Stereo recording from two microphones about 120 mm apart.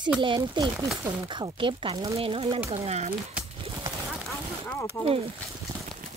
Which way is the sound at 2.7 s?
65° right (ahead or behind).